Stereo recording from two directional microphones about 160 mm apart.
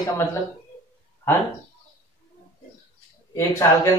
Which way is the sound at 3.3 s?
20° left (ahead or behind).